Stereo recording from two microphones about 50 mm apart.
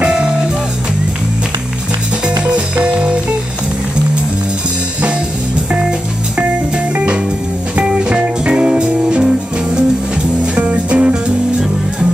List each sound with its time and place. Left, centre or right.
0.0 s music: centre
2.2 s music: right
5.7 s music: right
7.7 s music: right
10.4 s music: right